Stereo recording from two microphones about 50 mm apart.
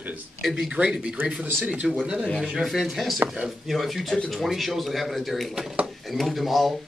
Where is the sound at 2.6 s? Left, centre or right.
Centre.